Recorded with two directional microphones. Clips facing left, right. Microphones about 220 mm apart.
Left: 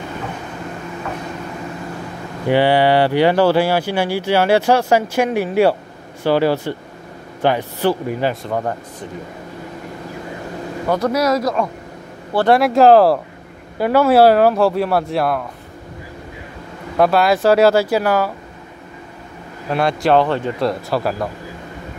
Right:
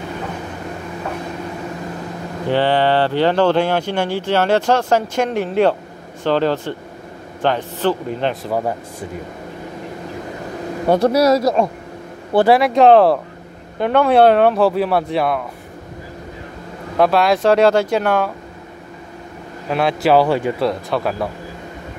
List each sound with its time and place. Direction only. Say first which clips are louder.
2.4 s speech: left 2 dB; 10° left (ahead or behind)
8.5 s speech: right 1 dB; 5° right (ahead or behind)
10.9 s speech: right 4 dB; 30° right (ahead or behind)
12.4 s speech: left 1 dB; centre (ahead or behind)
16.9 s speech: even; centre (ahead or behind)
19.7 s speech: right 1 dB; centre (ahead or behind)
20.6 s speech: even; centre (ahead or behind)